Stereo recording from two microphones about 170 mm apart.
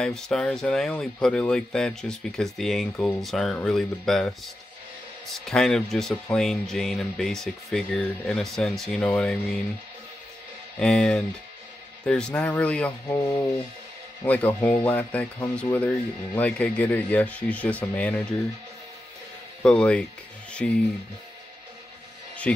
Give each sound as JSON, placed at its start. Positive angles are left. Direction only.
{"t": 0.0, "sound": "speech", "side_deg": 5}
{"t": 5.4, "sound": "speech", "side_deg": 5}
{"t": 10.8, "sound": "speech", "side_deg": 5}
{"t": 19.6, "sound": "speech", "side_deg": 5}